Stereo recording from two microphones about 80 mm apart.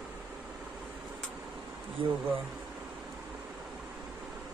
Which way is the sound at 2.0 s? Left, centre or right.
Right.